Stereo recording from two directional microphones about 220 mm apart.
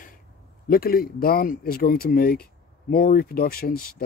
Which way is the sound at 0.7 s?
40° left (ahead or behind).